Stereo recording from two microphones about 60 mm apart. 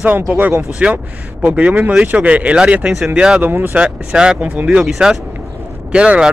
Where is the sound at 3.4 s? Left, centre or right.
Right.